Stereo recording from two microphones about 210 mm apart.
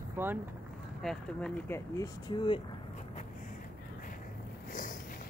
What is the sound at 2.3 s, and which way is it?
Speech, 25° left (ahead or behind).